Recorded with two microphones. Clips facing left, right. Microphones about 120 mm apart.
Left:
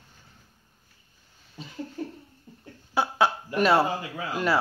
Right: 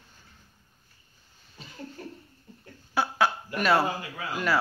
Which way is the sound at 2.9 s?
25° left (ahead or behind).